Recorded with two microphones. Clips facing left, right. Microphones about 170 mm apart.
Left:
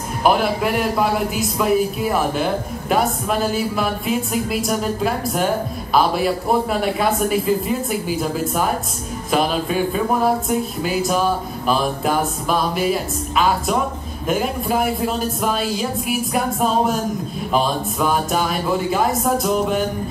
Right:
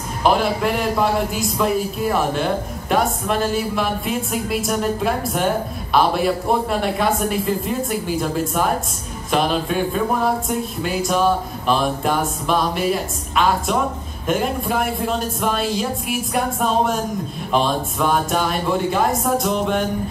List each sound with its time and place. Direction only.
0.2 s a man's voice: 5° left (ahead or behind)